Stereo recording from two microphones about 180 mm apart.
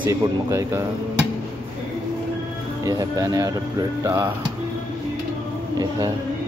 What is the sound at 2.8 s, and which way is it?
Speech, 20° right (ahead or behind).